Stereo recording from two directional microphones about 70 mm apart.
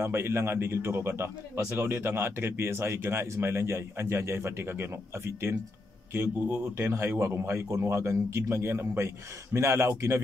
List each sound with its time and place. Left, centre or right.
0.0 s speech: right